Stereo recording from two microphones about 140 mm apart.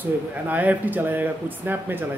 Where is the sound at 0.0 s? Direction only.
10° right (ahead or behind).